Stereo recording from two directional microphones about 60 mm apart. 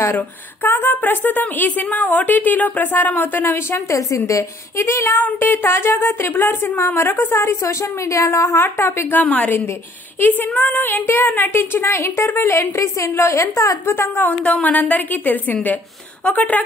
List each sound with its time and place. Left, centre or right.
0.7 s a woman's voice: left
3.7 s a woman's voice: left
5.1 s a woman's voice: left
7.6 s a woman's voice: left
8.6 s a woman's voice: left
13.8 s a woman's voice: left
14.4 s a woman's voice: left